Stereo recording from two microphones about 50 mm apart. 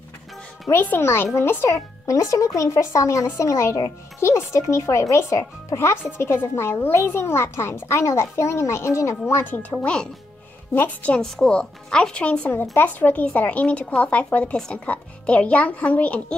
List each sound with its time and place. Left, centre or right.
0.9 s speech: left
2.0 s speech: left
5.4 s a woman's voice: left
9.4 s speech: left
10.7 s speech: left
11.1 s speech: centre
12.7 s a woman's voice: left